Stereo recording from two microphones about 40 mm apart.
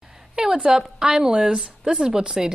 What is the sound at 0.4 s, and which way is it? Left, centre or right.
A woman's voice, centre.